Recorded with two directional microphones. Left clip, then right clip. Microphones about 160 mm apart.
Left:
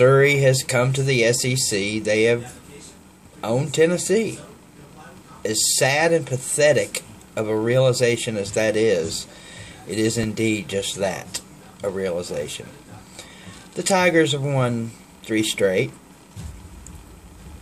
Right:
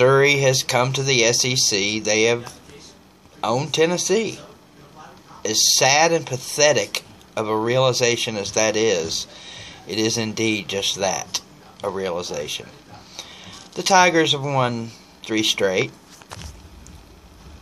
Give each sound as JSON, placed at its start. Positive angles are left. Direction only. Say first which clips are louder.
{"t": 0.0, "sound": "speech", "louder": "even", "side_deg": 20}
{"t": 5.4, "sound": "speech", "louder": "right 3 dB", "side_deg": 20}
{"t": 13.7, "sound": "speech", "louder": "right 2 dB", "side_deg": 25}